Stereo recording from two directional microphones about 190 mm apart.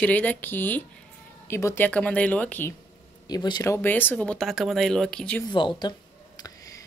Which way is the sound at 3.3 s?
20° left (ahead or behind).